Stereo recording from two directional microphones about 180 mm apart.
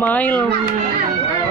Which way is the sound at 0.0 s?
10° left (ahead or behind).